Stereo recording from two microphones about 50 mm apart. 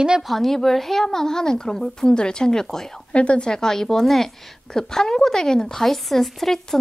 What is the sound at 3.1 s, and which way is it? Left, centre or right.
Speech, left.